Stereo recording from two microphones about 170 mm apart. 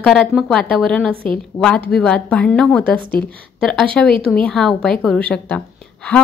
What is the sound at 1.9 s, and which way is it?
A woman's voice, 5° left (ahead or behind).